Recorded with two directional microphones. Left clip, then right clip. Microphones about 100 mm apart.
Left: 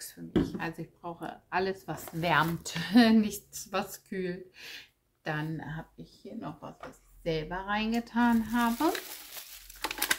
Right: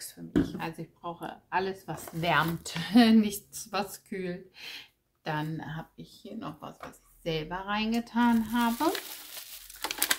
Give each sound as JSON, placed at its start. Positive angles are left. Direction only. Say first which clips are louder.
{"t": 0.0, "sound": "speech", "louder": "right 1 dB", "side_deg": 5}
{"t": 5.6, "sound": "speech", "louder": "right 1 dB", "side_deg": -10}
{"t": 7.2, "sound": "speech", "louder": "even", "side_deg": -20}
{"t": 8.4, "sound": "frying", "louder": "even", "side_deg": 10}
{"t": 9.8, "sound": "a sound", "louder": "even", "side_deg": 5}